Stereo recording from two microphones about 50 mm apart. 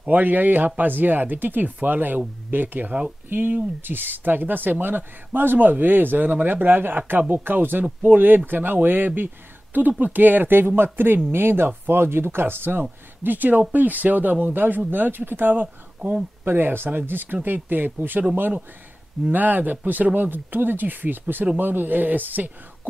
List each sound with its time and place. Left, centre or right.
0.1 s speech: right
16.0 s speech: centre
16.4 s speech: right
19.3 s speech: right